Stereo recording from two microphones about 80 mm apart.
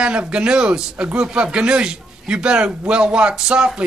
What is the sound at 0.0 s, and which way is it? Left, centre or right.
A man's voice, centre.